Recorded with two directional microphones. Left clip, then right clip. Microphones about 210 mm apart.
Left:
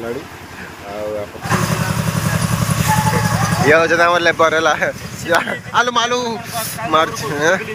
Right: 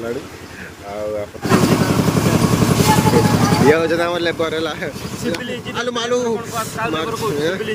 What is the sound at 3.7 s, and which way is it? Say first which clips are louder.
Speech: left 4 dB; 10° right (ahead or behind).